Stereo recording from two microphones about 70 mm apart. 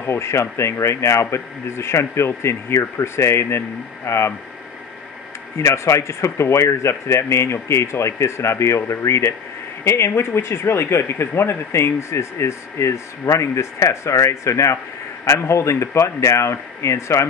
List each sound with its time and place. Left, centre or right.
0.0 s speech: left
5.6 s speech: left